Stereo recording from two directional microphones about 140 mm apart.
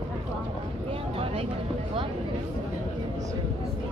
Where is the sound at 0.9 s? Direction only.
40° right (ahead or behind).